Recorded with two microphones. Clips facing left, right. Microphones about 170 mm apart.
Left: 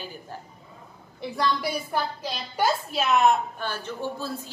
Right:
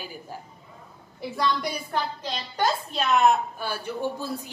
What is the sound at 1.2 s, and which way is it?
A woman's voice, centre (ahead or behind).